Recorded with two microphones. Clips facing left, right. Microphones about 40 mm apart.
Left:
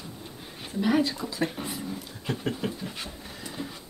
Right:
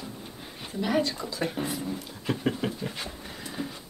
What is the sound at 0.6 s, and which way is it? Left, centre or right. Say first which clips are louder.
Speech: left 2 dB; centre.